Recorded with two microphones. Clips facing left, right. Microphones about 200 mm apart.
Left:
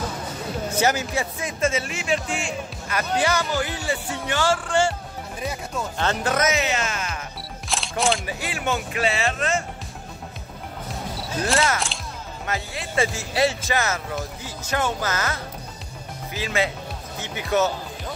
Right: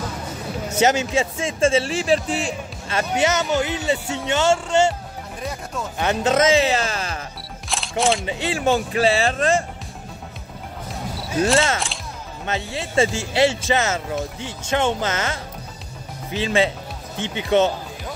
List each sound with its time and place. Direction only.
0.7 s speech: 25° right (ahead or behind)
5.4 s speech: centre (ahead or behind)
5.9 s speech: 20° right (ahead or behind)
7.6 s single-lens reflex camera: centre (ahead or behind)
8.0 s speech: centre (ahead or behind)
8.3 s speech: 25° right (ahead or behind)
11.5 s speech: 25° right (ahead or behind)